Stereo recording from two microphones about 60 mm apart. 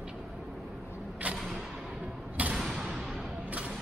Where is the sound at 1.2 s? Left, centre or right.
Right.